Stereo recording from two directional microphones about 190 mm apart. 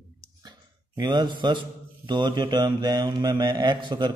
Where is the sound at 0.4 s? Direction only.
20° right (ahead or behind).